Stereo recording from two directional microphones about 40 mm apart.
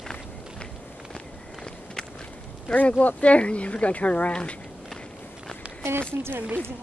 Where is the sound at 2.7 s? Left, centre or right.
Left.